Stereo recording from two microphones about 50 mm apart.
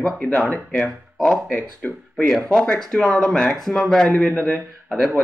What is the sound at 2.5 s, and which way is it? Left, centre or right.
A man's voice, centre.